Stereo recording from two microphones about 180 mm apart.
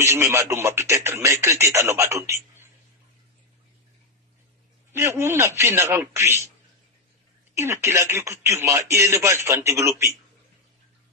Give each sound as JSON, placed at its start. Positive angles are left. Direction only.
{"t": 0.0, "sound": "speech", "side_deg": -15}
{"t": 4.9, "sound": "speech", "side_deg": -15}
{"t": 7.5, "sound": "speech", "side_deg": -15}